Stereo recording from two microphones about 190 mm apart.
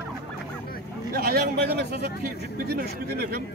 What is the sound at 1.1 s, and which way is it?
Speech, 55° right (ahead or behind).